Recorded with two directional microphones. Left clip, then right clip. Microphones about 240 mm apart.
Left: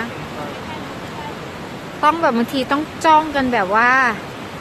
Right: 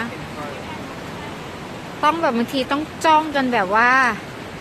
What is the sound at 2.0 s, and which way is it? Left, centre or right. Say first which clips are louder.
Speech: left 3 dB; centre.